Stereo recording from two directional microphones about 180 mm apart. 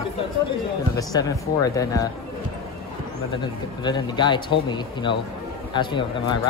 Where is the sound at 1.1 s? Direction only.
20° left (ahead or behind).